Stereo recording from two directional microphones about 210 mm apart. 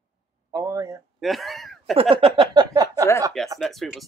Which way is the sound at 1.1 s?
Centre (ahead or behind).